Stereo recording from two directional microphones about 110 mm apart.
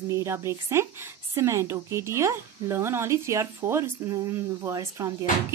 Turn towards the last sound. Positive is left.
turn(degrees=-30)  # may be behind; listen again after turning